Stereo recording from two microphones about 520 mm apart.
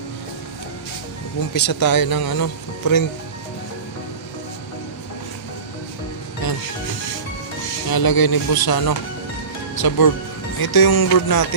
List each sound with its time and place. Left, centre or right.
1.7 s speech: left
6.4 s music: left
7.9 s speech: left